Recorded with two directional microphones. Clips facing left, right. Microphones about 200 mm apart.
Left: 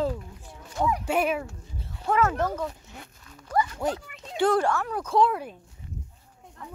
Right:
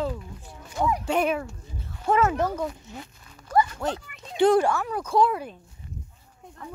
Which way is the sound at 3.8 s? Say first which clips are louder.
Left 1 dB; 15° left (ahead or behind).